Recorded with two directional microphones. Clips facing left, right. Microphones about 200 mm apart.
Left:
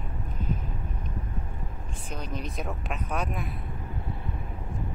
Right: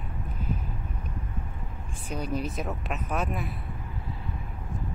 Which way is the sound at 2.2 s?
10° right (ahead or behind).